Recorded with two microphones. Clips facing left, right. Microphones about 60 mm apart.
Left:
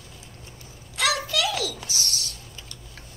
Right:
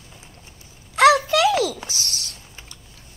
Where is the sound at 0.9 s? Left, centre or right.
Right.